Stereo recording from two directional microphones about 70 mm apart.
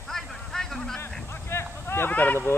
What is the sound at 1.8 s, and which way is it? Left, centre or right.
Speech, left.